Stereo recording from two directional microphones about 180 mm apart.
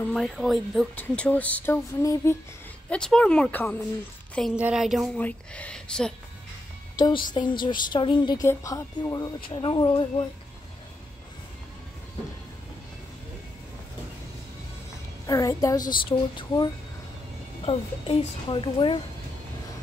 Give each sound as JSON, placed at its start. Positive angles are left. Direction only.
{"t": 0.0, "sound": "speech", "side_deg": 0}
{"t": 2.9, "sound": "speech", "side_deg": 5}
{"t": 4.6, "sound": "speech", "side_deg": -5}
{"t": 7.0, "sound": "a woman's voice", "side_deg": 25}
{"t": 15.2, "sound": "a woman's voice", "side_deg": 20}